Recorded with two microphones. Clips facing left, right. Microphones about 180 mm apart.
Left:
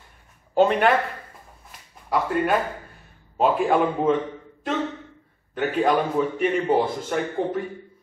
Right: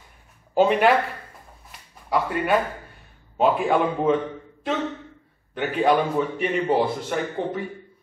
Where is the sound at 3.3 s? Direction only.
Centre (ahead or behind).